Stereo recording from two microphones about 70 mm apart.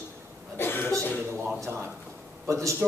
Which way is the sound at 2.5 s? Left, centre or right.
Right.